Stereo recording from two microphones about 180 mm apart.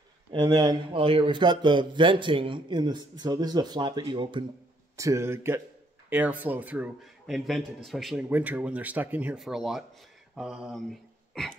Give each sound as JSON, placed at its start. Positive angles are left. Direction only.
{"t": 0.3, "sound": "a man's voice", "side_deg": -25}
{"t": 4.9, "sound": "a man's voice", "side_deg": -15}